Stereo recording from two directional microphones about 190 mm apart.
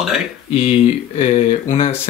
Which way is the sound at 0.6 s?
30° left (ahead or behind).